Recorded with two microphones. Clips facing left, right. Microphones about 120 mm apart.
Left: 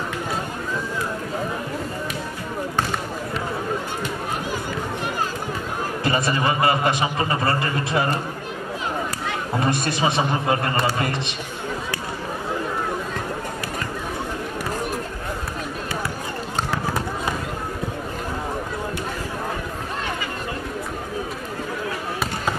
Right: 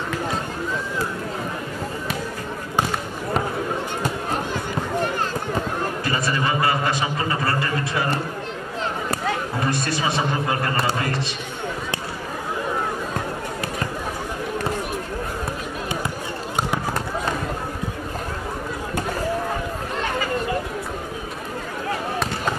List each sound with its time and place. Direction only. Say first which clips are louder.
6.0 s a man's voice: left 4 dB; 20° left (ahead or behind)
9.7 s a man's voice: left 2 dB; 20° left (ahead or behind)